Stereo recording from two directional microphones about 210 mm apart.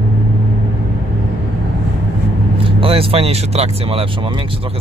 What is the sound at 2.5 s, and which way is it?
Speech, 25° right (ahead or behind).